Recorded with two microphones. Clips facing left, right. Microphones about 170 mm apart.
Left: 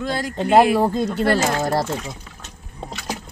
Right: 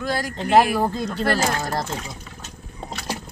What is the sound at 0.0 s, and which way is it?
Speech, 25° left (ahead or behind).